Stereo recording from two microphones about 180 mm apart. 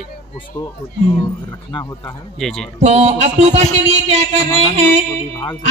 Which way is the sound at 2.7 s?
35° right (ahead or behind).